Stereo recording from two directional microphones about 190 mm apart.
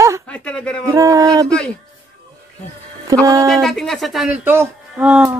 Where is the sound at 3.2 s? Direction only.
20° right (ahead or behind).